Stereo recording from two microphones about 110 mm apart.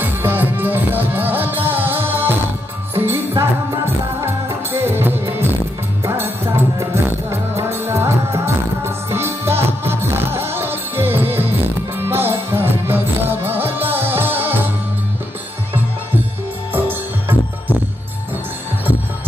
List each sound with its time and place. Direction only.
0.0 s music: 15° right (ahead or behind)
16.7 s music: 20° right (ahead or behind)